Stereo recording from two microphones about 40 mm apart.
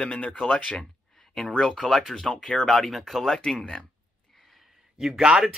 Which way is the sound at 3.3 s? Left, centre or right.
Left.